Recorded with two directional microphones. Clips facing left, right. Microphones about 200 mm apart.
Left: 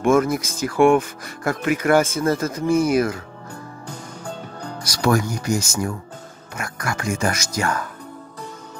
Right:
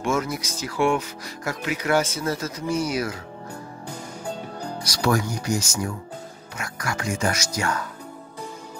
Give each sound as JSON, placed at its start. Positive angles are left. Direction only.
{"t": 0.0, "sound": "speech", "side_deg": 50}
{"t": 4.8, "sound": "speech", "side_deg": 50}